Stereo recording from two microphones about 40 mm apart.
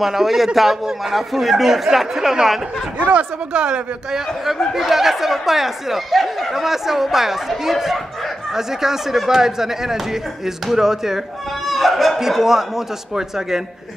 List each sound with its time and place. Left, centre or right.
0.0 s speech: centre
3.1 s speech: right
3.6 s speech: right
4.7 s speech: centre
11.6 s speech: centre